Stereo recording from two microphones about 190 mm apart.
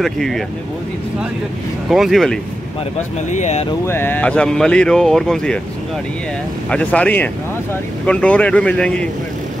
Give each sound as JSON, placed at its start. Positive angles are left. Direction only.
{"t": 0.0, "sound": "speech", "side_deg": 0}
{"t": 1.9, "sound": "speech", "side_deg": 0}
{"t": 3.3, "sound": "speech", "side_deg": 40}
{"t": 3.8, "sound": "speech", "side_deg": 10}
{"t": 6.7, "sound": "speech", "side_deg": 5}